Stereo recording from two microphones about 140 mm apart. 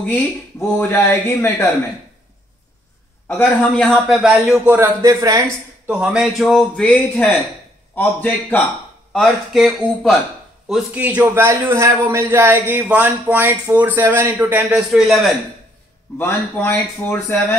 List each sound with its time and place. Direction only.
0.7 s speech: 15° left (ahead or behind)
3.3 s speech: 10° left (ahead or behind)
4.1 s a man's voice: 5° right (ahead or behind)
4.6 s speech: 20° right (ahead or behind)
5.9 s a man's voice: 5° right (ahead or behind); by 8.6 s 10° left (ahead or behind)
9.1 s a man's voice: centre (ahead or behind)
10.7 s a man's voice: 10° right (ahead or behind)
16.2 s speech: 15° left (ahead or behind)